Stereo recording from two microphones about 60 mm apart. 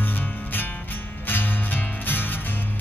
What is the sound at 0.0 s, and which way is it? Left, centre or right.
Music, left.